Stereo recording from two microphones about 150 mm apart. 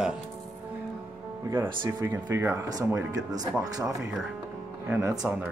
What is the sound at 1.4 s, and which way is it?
Speech, 15° right (ahead or behind).